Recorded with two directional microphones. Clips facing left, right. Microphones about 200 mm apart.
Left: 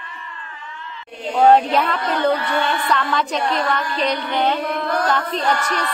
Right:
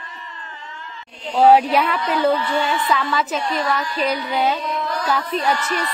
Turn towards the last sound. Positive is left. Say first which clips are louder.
# even
turn(degrees=55)  # may be behind; listen again after turning